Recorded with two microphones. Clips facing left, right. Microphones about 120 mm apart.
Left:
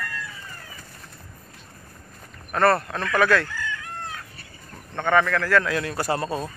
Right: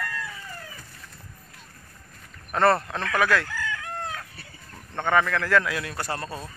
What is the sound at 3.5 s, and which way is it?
Chicken, 90° right.